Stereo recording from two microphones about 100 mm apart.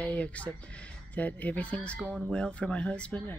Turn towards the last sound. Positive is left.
turn(degrees=10)  # may be behind; listen again after turning